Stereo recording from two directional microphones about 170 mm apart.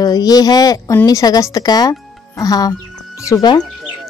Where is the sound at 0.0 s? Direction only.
20° left (ahead or behind).